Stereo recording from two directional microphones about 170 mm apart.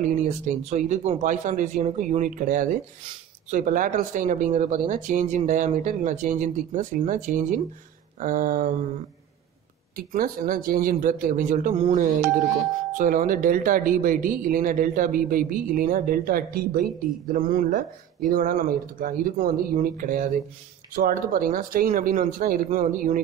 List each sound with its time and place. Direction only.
0.0 s speech: 45° right (ahead or behind)
9.9 s speech: 55° right (ahead or behind)
11.7 s speech: 35° right (ahead or behind)
12.9 s speech: 50° right (ahead or behind)